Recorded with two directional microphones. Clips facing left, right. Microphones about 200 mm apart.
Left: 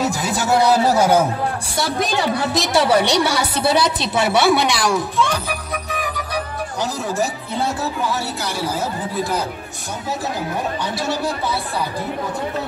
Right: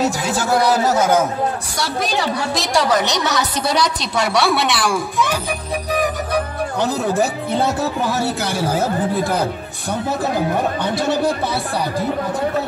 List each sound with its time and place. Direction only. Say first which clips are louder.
0.4 s a woman's voice: left 1 dB; 25° left (ahead or behind)
3.3 s a woman's voice: left 1 dB; 10° left (ahead or behind); by 5.4 s 10° right (ahead or behind)
5.9 s music: right 10 dB; 40° right (ahead or behind)
8.5 s speech: right 4 dB; 50° right (ahead or behind)